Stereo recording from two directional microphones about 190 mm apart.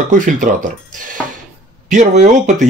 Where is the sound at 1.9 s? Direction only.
40° right (ahead or behind).